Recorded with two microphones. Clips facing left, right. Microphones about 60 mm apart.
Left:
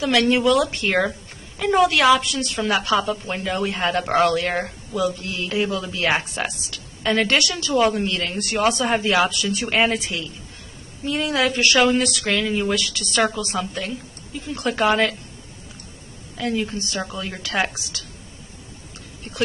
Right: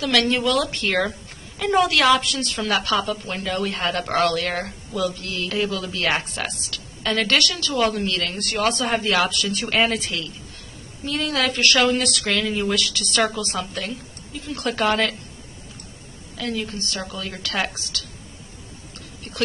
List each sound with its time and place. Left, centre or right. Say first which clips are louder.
0.0 s a woman's voice: left 3 dB; centre
16.3 s a woman's voice: left 3 dB; centre